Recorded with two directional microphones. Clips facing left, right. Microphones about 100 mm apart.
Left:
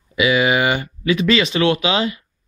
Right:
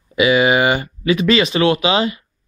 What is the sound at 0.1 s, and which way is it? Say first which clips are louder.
Speech: right 3 dB; 40° right (ahead or behind).